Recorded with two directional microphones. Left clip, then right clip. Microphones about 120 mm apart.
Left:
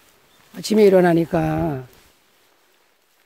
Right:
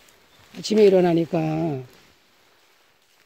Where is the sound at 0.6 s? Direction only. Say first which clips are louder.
Left 2 dB; 40° left (ahead or behind).